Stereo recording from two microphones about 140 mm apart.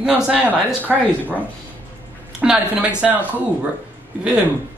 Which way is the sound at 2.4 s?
10° right (ahead or behind).